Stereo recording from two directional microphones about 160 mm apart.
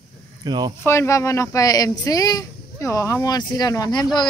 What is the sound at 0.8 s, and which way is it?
Speech, 15° left (ahead or behind).